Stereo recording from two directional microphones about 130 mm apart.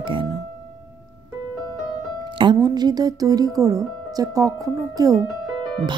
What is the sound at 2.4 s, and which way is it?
Speech, 30° right (ahead or behind).